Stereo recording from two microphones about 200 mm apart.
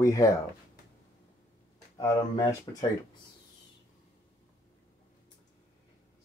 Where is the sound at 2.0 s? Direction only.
15° left (ahead or behind).